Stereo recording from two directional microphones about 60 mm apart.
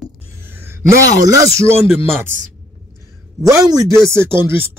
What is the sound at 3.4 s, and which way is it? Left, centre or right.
Speech, right.